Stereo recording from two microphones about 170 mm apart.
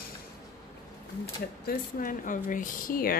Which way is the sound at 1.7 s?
55° left (ahead or behind).